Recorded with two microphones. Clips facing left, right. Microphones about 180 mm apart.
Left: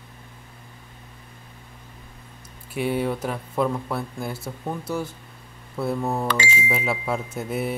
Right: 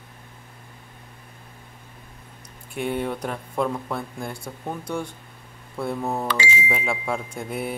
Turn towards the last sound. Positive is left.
turn(degrees=0)  # may be behind; listen again after turning